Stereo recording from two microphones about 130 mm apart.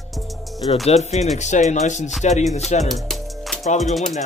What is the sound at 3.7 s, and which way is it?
Speech, 60° left (ahead or behind).